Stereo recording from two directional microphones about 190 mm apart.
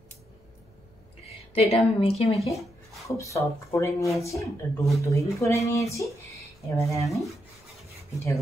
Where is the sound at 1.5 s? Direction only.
35° left (ahead or behind).